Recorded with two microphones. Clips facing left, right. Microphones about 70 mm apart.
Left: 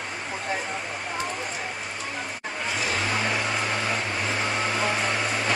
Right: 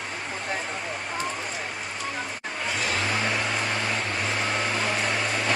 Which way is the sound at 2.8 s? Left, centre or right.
Centre.